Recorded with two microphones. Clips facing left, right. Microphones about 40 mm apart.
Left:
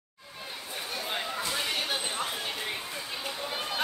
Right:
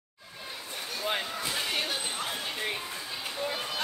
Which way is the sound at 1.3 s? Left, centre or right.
Centre.